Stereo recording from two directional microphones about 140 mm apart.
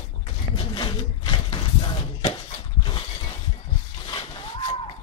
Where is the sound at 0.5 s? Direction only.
35° left (ahead or behind).